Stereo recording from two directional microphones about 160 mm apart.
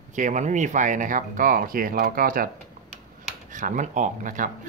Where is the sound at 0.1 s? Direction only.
50° right (ahead or behind).